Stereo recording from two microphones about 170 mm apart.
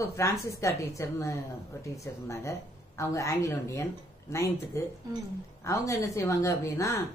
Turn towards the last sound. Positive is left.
turn(degrees=20)  # may be behind; listen again after turning